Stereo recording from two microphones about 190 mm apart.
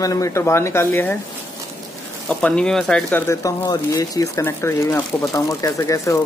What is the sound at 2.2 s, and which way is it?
Speech, 5° left (ahead or behind).